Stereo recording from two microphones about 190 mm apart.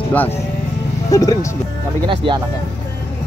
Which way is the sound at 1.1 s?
20° left (ahead or behind).